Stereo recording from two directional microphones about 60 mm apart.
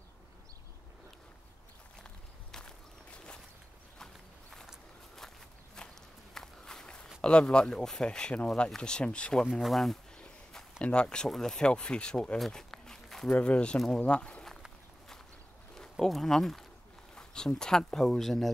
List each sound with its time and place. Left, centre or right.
2.5 s walk: centre
5.8 s walk: centre
7.2 s speech: centre
9.5 s speech: centre
10.1 s a sound: centre
10.8 s speech: centre
12.4 s a sound: centre
13.3 s speech: centre
15.8 s speech: centre